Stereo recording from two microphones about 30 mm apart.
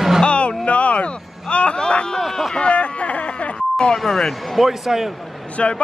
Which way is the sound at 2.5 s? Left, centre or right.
Left.